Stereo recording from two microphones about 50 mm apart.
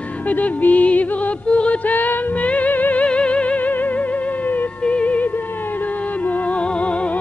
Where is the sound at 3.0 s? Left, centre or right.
Left.